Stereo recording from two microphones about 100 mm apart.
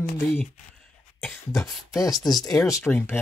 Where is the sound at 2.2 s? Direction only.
40° left (ahead or behind); by 3.2 s 25° left (ahead or behind).